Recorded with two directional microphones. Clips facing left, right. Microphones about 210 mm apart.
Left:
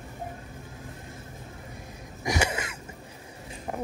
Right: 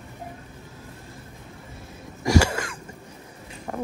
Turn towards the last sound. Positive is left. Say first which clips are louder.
# right 2 dB
turn(degrees=20)  # may be behind; listen again after turning